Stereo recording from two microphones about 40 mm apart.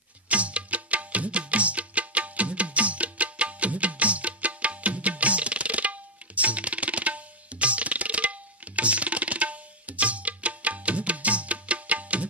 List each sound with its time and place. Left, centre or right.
0.3 s music: right